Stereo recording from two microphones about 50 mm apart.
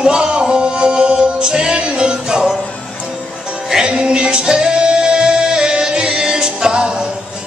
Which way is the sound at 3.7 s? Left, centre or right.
Centre.